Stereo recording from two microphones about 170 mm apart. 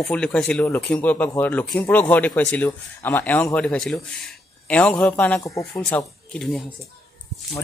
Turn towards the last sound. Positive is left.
turn(degrees=0)  # may be behind; listen again after turning